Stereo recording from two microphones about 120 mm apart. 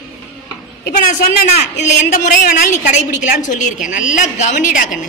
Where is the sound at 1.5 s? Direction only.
75° left (ahead or behind).